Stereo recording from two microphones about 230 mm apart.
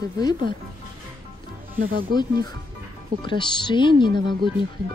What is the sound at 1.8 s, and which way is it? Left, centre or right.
Speech, right.